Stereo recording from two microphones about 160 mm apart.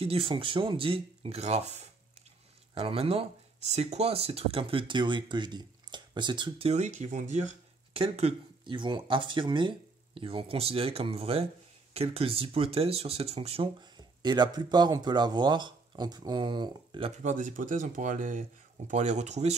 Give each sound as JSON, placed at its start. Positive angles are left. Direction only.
{"t": 0.0, "sound": "speech", "side_deg": -35}
{"t": 6.7, "sound": "speech", "side_deg": -45}
{"t": 7.9, "sound": "speech", "side_deg": -35}
{"t": 17.2, "sound": "speech", "side_deg": -50}